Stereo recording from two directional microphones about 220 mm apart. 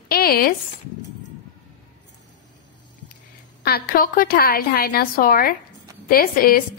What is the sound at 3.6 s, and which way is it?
A woman's voice, 40° left (ahead or behind).